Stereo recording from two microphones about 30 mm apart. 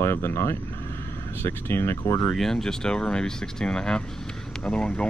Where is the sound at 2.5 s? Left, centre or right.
Left.